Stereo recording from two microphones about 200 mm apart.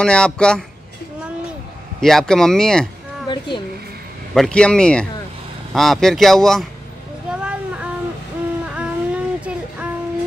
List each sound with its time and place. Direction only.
0.0 s speech: 5° left (ahead or behind)
2.0 s speech: centre (ahead or behind)
3.3 s speech: 25° left (ahead or behind)
4.3 s speech: 5° left (ahead or behind)
7.2 s a sound: 5° right (ahead or behind)